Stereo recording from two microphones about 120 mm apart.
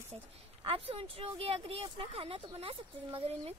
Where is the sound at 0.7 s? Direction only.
50° right (ahead or behind).